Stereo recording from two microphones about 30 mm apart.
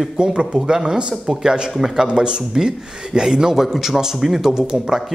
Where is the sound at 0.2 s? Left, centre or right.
Right.